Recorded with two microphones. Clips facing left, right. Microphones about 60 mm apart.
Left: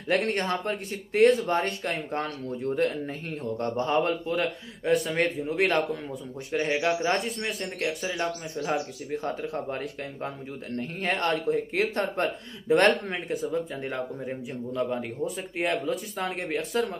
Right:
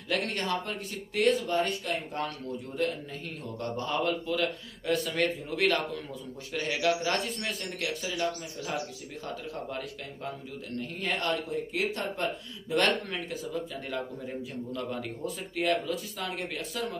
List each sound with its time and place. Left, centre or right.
0.1 s speech: left